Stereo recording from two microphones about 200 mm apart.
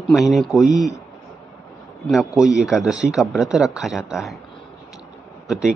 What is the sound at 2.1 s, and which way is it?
Speech, centre (ahead or behind).